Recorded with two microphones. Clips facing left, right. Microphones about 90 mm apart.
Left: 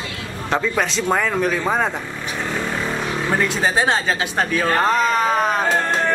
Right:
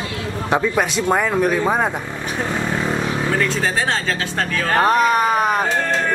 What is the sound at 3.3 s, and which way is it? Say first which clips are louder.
Speech: left 3 dB; 20° left (ahead or behind).